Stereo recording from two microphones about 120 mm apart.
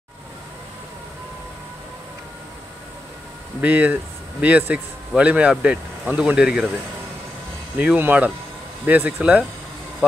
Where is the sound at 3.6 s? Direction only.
10° right (ahead or behind).